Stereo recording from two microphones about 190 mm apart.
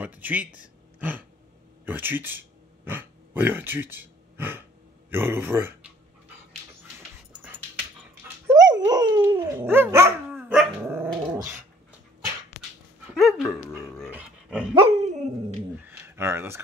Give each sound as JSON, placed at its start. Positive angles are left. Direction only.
{"t": 0.0, "sound": "speech", "side_deg": -10}
{"t": 1.9, "sound": "speech", "side_deg": -10}
{"t": 8.5, "sound": "dog", "side_deg": -20}
{"t": 13.1, "sound": "dog", "side_deg": 0}
{"t": 14.7, "sound": "dog", "side_deg": -30}
{"t": 15.8, "sound": "a sound", "side_deg": -10}